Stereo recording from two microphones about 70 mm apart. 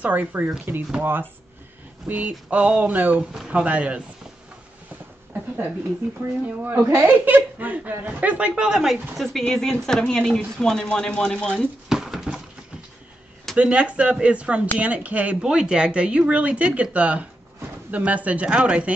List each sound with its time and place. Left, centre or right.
0.0 s speech: right
2.0 s speech: right
6.4 s speech: right; by 11.6 s centre
11.9 s dog: centre
13.6 s speech: centre